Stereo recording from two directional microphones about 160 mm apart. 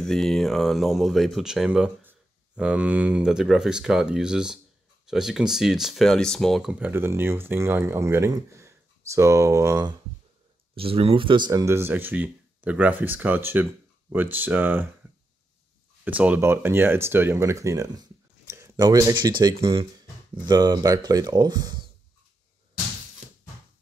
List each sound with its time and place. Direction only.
0.0 s speech: centre (ahead or behind); by 9.9 s 20° right (ahead or behind)
10.8 s speech: 35° right (ahead or behind); by 14.9 s 10° right (ahead or behind)
16.0 s speech: 10° right (ahead or behind); by 21.8 s 25° right (ahead or behind)